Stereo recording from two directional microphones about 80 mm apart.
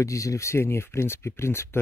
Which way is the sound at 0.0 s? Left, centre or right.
Left.